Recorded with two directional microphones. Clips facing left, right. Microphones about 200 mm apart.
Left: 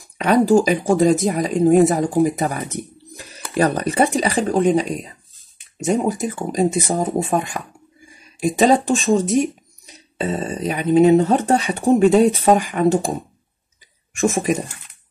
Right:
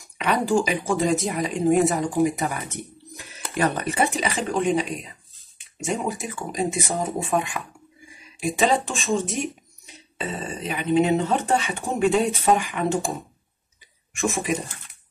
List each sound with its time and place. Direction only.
0.2 s speech: 40° left (ahead or behind)
14.3 s speech: 45° left (ahead or behind)